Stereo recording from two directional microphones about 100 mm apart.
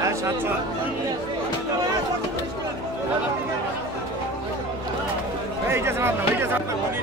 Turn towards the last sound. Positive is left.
turn(degrees=-25)  # may be behind; listen again after turning